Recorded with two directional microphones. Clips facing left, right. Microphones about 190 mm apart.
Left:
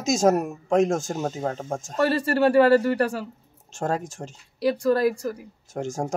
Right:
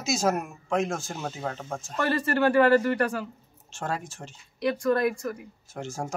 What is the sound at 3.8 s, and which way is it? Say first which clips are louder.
Speech: left 6 dB; 40° left (ahead or behind).